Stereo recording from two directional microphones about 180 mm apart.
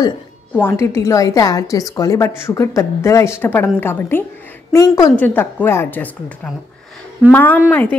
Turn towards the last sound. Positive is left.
turn(degrees=10)  # may be behind; listen again after turning